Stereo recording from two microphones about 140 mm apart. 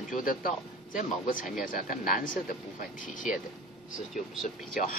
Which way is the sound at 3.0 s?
70° left (ahead or behind).